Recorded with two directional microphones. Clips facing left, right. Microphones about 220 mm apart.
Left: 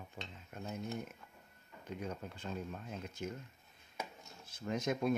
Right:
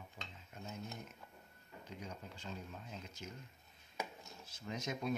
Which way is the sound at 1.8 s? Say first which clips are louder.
Left 7 dB; 55° left (ahead or behind).